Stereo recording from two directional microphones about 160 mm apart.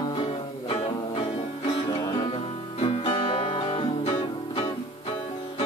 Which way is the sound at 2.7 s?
35° left (ahead or behind).